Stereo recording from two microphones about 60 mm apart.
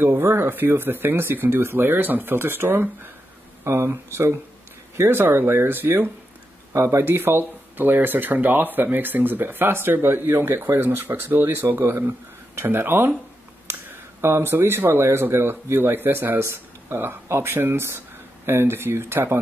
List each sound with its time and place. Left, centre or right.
0.0 s speech: right
3.6 s speech: right
6.7 s speech: right
7.1 s speech: right
10.8 s speech: right